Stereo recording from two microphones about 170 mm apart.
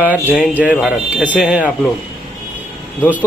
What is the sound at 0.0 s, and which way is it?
Speech, 10° right (ahead or behind).